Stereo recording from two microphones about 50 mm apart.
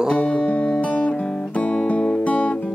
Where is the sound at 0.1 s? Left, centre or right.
Left.